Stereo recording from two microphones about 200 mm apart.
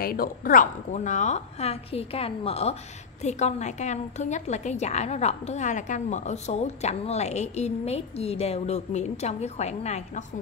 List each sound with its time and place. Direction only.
0.0 s a woman's voice: 45° left (ahead or behind)